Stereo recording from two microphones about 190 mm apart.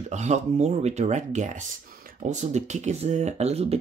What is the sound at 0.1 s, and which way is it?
Speech, 35° right (ahead or behind).